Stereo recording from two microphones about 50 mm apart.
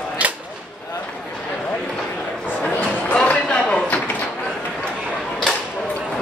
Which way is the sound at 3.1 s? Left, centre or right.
Left.